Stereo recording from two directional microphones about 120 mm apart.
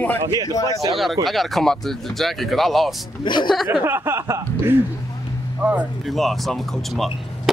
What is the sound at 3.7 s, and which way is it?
Speech, 20° right (ahead or behind).